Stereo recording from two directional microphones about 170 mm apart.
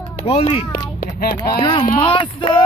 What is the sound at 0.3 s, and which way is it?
Speech, 35° left (ahead or behind).